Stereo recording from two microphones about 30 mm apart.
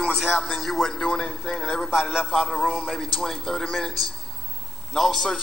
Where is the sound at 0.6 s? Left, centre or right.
Centre.